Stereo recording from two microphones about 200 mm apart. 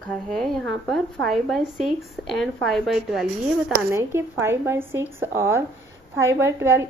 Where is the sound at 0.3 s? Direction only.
Centre (ahead or behind).